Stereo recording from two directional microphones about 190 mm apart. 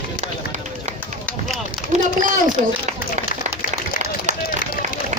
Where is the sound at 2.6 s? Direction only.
35° right (ahead or behind).